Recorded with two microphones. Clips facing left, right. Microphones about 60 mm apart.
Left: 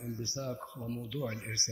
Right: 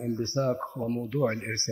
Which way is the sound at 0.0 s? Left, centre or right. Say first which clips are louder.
Right 11 dB; right.